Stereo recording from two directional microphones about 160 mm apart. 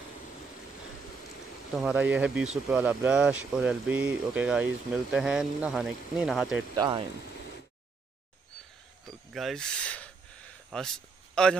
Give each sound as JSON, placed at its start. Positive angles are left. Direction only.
{"t": 1.8, "sound": "speech", "side_deg": -10}
{"t": 6.7, "sound": "speech", "side_deg": -25}
{"t": 9.0, "sound": "a sound", "side_deg": 0}
{"t": 11.4, "sound": "speech", "side_deg": 5}